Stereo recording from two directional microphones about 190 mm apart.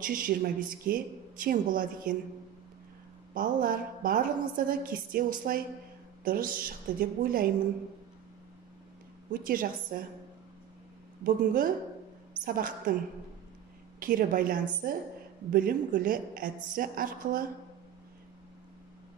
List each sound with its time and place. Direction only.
0.0 s a woman's voice: 45° right (ahead or behind)
3.3 s a woman's voice: 50° right (ahead or behind)
9.3 s a woman's voice: 50° right (ahead or behind)
11.2 s a woman's voice: 45° right (ahead or behind)
13.9 s a woman's voice: 45° right (ahead or behind)